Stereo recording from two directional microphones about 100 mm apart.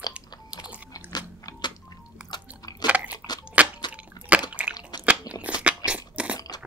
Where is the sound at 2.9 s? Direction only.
15° right (ahead or behind).